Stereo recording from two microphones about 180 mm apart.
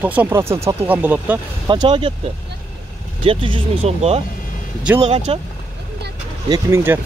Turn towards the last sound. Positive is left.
turn(degrees=-15)  # may be behind; listen again after turning